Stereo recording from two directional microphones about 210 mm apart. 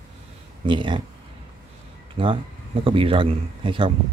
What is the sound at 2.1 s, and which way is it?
Speech, 25° right (ahead or behind).